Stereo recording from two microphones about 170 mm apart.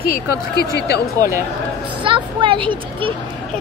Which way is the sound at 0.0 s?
65° left (ahead or behind).